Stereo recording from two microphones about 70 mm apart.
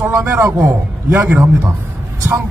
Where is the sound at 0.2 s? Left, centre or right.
Right.